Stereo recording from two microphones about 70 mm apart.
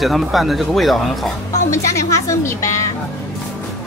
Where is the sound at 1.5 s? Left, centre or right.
Left.